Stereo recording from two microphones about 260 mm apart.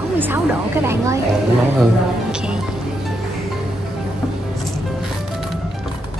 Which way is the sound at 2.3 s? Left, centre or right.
Centre.